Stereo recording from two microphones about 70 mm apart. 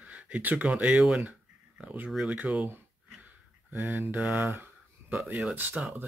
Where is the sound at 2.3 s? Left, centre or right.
Centre.